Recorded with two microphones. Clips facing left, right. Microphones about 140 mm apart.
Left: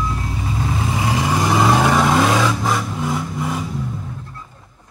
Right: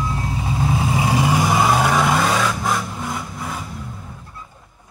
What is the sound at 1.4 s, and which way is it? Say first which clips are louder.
Vehicle: left 1 dB; 5° right (ahead or behind).